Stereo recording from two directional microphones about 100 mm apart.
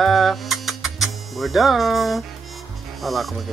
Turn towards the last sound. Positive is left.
turn(degrees=0)  # may be behind; listen again after turning